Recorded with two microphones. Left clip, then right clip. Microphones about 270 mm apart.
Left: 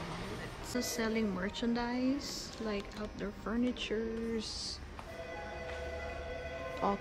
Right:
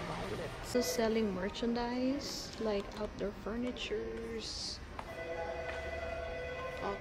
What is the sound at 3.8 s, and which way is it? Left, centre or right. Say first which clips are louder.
Speech: left 2 dB; centre.